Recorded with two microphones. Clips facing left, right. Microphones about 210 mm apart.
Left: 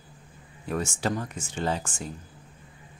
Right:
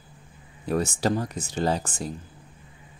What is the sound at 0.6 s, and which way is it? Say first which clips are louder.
Speech: right 4 dB; 35° right (ahead or behind).